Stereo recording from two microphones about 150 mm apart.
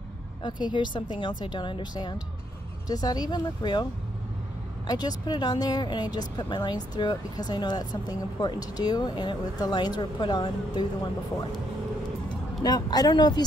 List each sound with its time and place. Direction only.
0.4 s a woman's voice: 30° left (ahead or behind)
4.8 s speech: 25° left (ahead or behind)
12.6 s speech: 25° left (ahead or behind)